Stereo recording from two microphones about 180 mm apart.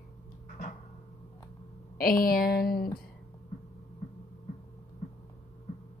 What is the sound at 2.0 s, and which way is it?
Speech, 55° left (ahead or behind).